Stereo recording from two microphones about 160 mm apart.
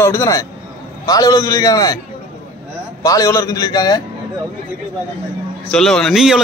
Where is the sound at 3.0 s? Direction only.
20° left (ahead or behind).